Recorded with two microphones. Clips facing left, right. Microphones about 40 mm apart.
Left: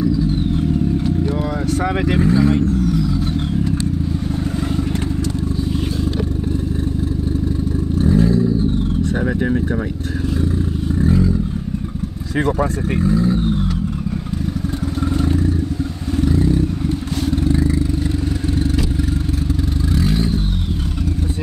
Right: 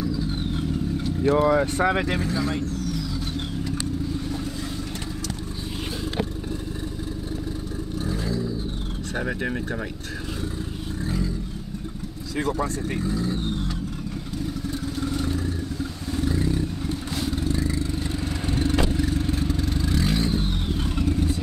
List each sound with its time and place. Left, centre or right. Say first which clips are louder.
1.4 s vehicle: even; right
1.9 s speech: left 4 dB; centre
2.1 s speech: left 10 dB; left
8.0 s vehicle: left 13 dB; left
9.1 s vehicle: left 4 dB; centre
11.0 s vehicle: left 11 dB; left
12.4 s speech: left 6 dB; left
16.4 s a sound: left 8 dB; centre
17.4 s vehicle: left 10 dB; left
18.9 s vehicle: left 3 dB; centre